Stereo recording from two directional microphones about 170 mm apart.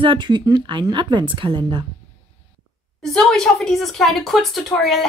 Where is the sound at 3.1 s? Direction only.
5° left (ahead or behind).